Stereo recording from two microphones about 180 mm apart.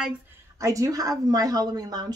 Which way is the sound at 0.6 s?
20° right (ahead or behind).